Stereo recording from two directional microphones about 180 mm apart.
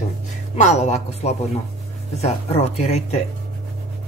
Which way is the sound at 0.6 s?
40° left (ahead or behind).